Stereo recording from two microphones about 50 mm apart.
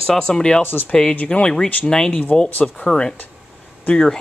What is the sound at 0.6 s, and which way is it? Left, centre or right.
Speech, left.